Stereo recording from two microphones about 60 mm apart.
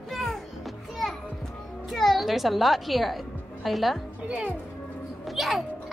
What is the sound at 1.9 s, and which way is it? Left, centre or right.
A child's voice, centre.